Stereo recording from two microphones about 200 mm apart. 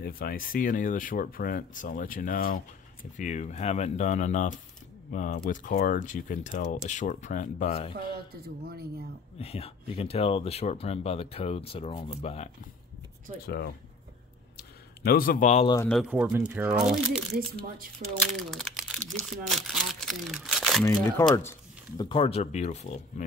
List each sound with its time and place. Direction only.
0.0 s speech: 50° left (ahead or behind)
9.4 s speech: 30° left (ahead or behind)
13.5 s speech: 50° left (ahead or behind)
15.0 s speech: 45° left (ahead or behind)
15.6 s speech: 20° left (ahead or behind)
15.9 s speech: 5° right (ahead or behind)
20.8 s speech: 15° left (ahead or behind)
22.1 s speech: 30° left (ahead or behind)